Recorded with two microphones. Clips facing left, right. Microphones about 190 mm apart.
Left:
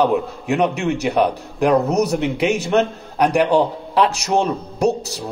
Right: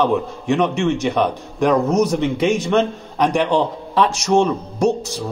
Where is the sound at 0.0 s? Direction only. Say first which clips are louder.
Left 1 dB; 10° left (ahead or behind).